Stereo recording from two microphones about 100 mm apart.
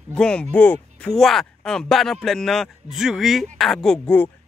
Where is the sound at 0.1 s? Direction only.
10° left (ahead or behind).